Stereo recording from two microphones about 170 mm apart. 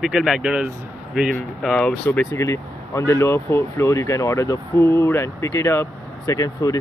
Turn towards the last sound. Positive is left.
turn(degrees=20)  # may be behind; listen again after turning